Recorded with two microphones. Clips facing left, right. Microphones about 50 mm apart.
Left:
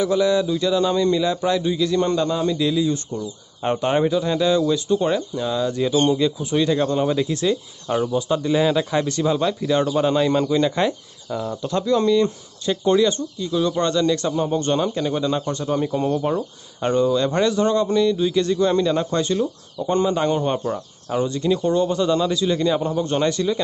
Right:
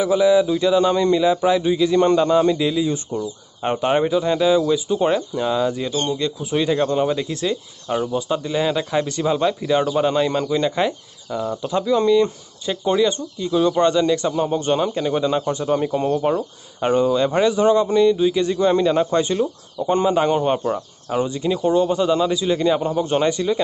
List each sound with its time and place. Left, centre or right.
0.0 s a man's voice: centre
3.6 s speech: centre
5.9 s speech: centre
6.5 s speech: centre